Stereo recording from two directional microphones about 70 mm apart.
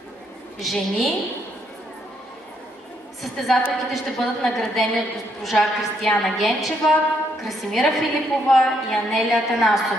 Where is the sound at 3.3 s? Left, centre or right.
Centre.